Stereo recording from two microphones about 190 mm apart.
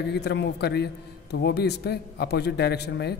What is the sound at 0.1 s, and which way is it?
A man's voice, 60° left (ahead or behind).